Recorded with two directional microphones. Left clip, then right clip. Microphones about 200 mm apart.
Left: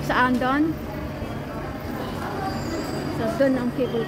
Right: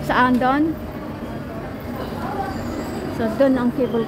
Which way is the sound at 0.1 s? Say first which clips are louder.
Right 4 dB; 15° right (ahead or behind).